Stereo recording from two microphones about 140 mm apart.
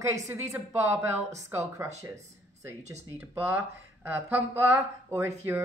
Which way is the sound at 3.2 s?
10° right (ahead or behind).